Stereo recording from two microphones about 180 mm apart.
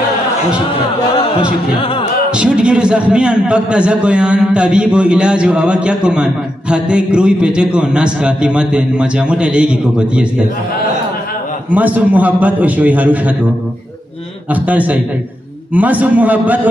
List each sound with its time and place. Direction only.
1.8 s music: 30° left (ahead or behind)
2.3 s a man's voice: 5° right (ahead or behind)
11.7 s a man's voice: 10° right (ahead or behind)
14.5 s a man's voice: 10° right (ahead or behind)